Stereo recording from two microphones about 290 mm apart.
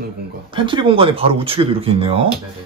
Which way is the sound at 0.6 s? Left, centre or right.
Centre.